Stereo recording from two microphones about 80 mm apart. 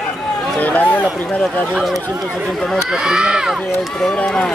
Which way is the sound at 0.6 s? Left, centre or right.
Centre.